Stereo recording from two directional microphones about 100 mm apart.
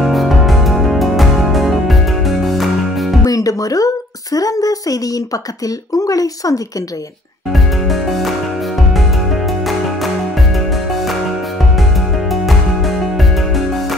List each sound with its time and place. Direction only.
0.0 s music: centre (ahead or behind)
3.3 s a sound: 35° left (ahead or behind)
5.9 s speech: 35° left (ahead or behind)
7.5 s music: centre (ahead or behind)
12.3 s music: centre (ahead or behind)